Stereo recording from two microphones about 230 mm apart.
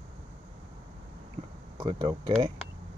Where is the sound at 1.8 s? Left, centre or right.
Centre.